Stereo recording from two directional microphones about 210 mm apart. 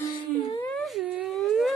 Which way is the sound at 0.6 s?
Centre (ahead or behind).